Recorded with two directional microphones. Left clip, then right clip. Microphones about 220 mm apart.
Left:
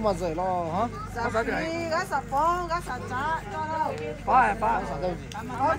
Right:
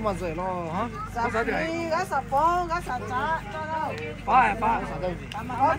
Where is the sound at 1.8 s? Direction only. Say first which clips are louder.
Right 1 dB; 45° right (ahead or behind).